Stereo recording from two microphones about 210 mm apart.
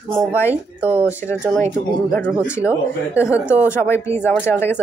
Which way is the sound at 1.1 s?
10° left (ahead or behind).